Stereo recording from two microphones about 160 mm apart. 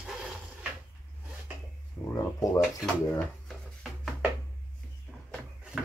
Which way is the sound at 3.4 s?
Centre (ahead or behind).